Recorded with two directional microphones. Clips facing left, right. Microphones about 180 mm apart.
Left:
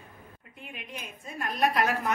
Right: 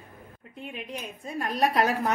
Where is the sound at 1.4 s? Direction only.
35° right (ahead or behind).